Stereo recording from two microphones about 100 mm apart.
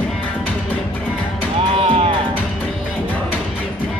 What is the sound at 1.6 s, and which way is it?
Music, 60° right (ahead or behind).